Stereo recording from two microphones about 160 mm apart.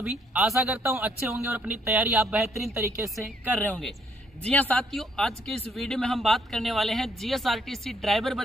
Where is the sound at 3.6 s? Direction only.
10° left (ahead or behind).